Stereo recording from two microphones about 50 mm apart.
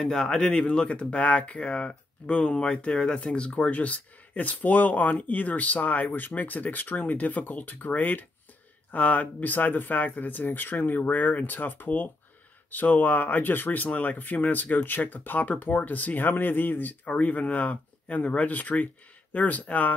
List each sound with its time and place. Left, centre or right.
0.0 s speech: centre; by 17.1 s left
17.1 s speech: left